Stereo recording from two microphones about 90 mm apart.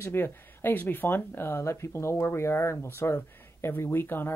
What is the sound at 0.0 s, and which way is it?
Speech, 25° left (ahead or behind).